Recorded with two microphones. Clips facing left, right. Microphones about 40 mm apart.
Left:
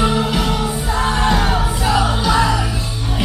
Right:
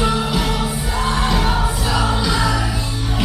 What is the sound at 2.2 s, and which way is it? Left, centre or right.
Music, left.